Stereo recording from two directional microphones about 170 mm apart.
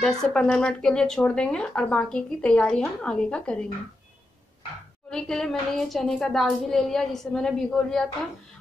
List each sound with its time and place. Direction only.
0.0 s speech: 5° left (ahead or behind)
5.1 s speech: 5° left (ahead or behind)